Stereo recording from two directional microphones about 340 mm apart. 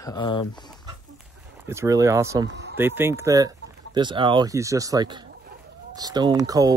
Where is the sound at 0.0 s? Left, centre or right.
Centre.